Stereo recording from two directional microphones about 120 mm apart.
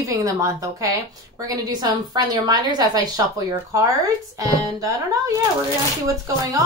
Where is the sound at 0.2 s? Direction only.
25° right (ahead or behind).